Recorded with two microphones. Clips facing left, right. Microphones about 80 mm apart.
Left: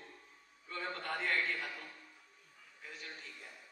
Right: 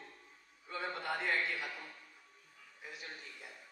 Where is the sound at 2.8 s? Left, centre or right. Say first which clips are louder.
Right 1 dB; centre.